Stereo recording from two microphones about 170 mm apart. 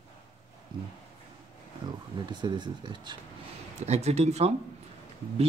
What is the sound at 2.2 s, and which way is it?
Speech, 25° right (ahead or behind).